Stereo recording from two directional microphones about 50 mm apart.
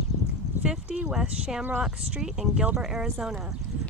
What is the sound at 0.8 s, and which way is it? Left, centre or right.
Speech, right.